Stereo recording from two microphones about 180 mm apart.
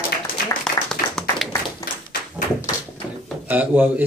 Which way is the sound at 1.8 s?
55° left (ahead or behind).